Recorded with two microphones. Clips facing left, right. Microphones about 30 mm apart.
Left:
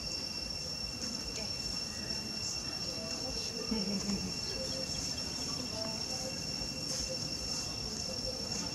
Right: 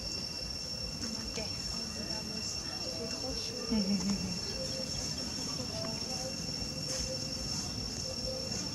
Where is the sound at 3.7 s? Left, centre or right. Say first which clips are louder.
Right 5 dB; centre.